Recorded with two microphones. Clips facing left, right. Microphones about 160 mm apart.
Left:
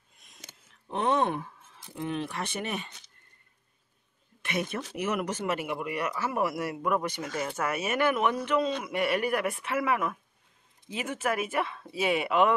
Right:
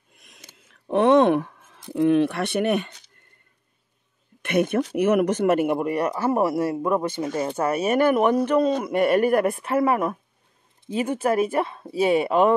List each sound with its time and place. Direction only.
0.8 s speech: 75° right (ahead or behind)
4.4 s speech: 55° right (ahead or behind); by 12.5 s 35° right (ahead or behind)